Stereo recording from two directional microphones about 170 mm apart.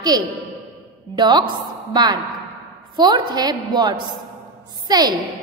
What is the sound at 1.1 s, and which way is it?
A woman's voice, 25° right (ahead or behind).